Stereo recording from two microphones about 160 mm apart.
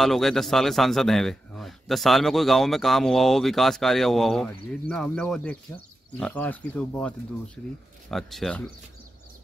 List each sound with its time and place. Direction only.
0.0 s a man's voice: centre (ahead or behind)